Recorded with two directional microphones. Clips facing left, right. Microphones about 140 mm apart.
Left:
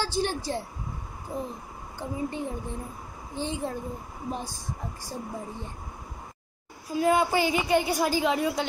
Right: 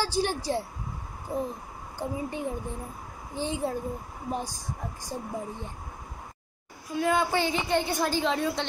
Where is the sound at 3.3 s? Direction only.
15° right (ahead or behind).